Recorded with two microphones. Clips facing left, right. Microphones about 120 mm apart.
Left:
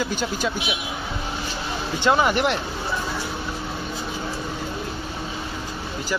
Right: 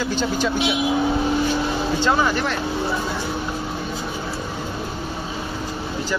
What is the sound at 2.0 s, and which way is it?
Speech, 20° left (ahead or behind).